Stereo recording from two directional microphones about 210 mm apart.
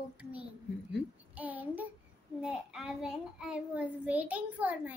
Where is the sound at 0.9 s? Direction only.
5° right (ahead or behind).